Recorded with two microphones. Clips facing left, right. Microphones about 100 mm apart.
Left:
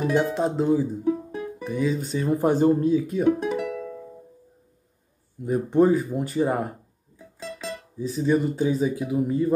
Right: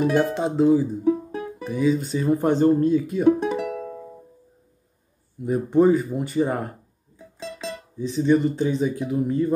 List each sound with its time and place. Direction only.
0.0 s speech: centre (ahead or behind)
3.6 s music: 45° right (ahead or behind)
5.4 s speech: centre (ahead or behind)
7.6 s speech: 5° left (ahead or behind)